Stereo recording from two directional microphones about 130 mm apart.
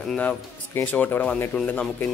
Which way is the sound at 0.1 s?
10° left (ahead or behind).